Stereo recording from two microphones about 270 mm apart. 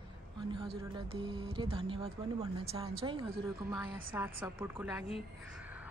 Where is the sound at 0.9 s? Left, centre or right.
Centre.